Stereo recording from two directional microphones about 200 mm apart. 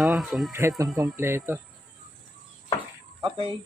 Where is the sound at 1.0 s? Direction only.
10° right (ahead or behind).